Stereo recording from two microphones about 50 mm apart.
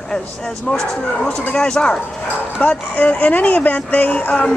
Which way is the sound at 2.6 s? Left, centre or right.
Left.